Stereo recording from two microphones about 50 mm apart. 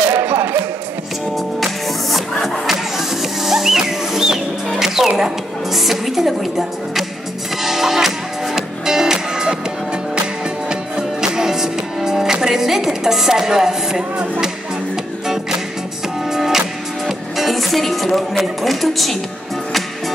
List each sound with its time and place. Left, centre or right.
0.1 s a sound: right
1.6 s music: centre
10.7 s music: centre
15.2 s music: centre